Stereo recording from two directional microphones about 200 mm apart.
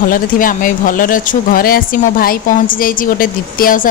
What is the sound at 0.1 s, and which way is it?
Speech, 45° left (ahead or behind).